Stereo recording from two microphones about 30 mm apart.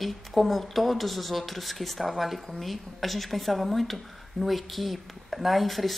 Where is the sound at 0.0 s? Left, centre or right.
Centre.